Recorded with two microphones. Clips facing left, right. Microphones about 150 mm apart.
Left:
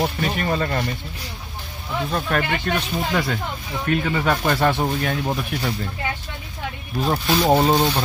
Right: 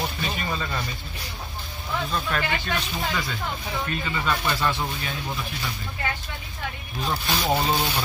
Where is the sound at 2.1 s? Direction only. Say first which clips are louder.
Left 6 dB; 55° left (ahead or behind).